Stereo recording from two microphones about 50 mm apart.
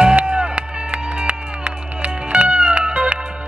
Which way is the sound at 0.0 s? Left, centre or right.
Right.